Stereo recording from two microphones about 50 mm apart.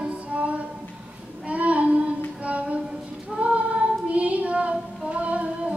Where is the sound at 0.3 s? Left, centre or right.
Right.